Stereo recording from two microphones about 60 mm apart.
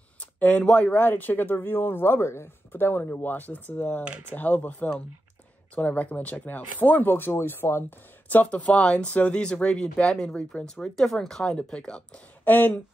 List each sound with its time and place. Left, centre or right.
0.2 s speech: left
8.3 s speech: left
12.4 s speech: left